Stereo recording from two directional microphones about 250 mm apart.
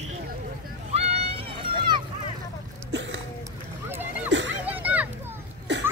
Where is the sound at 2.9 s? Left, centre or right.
Right.